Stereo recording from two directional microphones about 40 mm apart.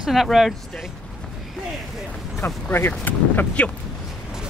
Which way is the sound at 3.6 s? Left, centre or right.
Left.